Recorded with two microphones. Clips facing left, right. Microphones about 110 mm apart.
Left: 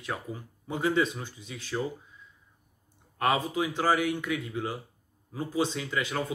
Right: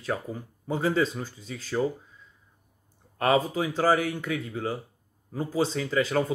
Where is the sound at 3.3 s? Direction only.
40° right (ahead or behind).